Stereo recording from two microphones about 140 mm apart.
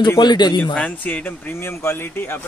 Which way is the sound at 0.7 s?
10° left (ahead or behind).